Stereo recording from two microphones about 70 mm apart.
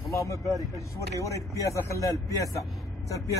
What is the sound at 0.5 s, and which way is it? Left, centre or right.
Speech, right.